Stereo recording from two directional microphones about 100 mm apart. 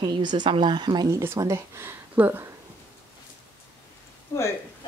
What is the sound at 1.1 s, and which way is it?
A woman's voice, 25° right (ahead or behind).